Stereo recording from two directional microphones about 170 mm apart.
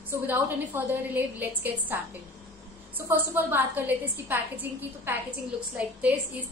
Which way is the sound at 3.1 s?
10° right (ahead or behind).